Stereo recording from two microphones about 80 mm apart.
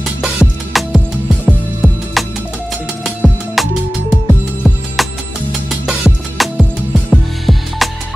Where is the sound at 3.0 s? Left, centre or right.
Centre.